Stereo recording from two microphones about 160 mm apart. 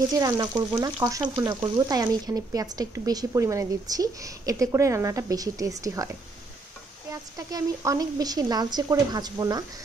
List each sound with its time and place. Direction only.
0.1 s speech: 25° right (ahead or behind)
7.1 s speech: 20° right (ahead or behind)